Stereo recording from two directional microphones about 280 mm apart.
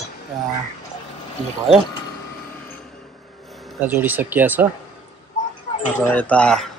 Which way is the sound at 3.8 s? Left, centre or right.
Centre.